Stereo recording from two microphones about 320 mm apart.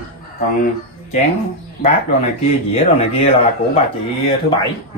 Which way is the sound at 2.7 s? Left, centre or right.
Centre.